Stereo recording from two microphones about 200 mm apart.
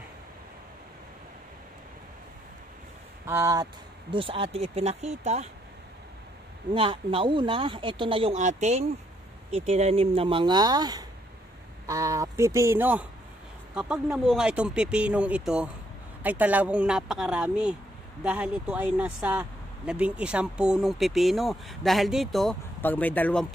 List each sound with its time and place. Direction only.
3.3 s speech: 15° right (ahead or behind)
4.1 s speech: 25° right (ahead or behind)
6.7 s speech: 25° right (ahead or behind); by 23.4 s 10° left (ahead or behind)